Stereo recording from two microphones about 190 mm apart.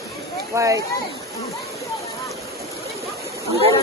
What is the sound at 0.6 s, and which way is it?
Speech, 15° right (ahead or behind).